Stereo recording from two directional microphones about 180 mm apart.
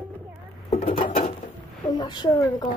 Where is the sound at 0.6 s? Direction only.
35° left (ahead or behind).